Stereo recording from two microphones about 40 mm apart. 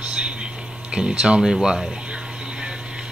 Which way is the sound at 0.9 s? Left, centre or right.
Right.